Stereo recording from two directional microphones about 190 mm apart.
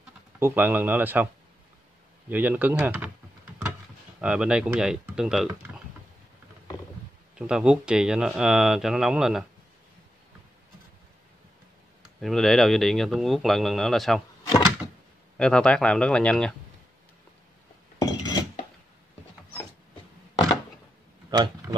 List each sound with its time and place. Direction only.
0.4 s speech: 10° right (ahead or behind)
4.2 s speech: 5° right (ahead or behind)
7.3 s speech: 5° right (ahead or behind)
12.2 s speech: centre (ahead or behind)
15.3 s speech: 5° left (ahead or behind)
17.9 s a sound: 20° left (ahead or behind)
21.3 s a sound: 20° right (ahead or behind)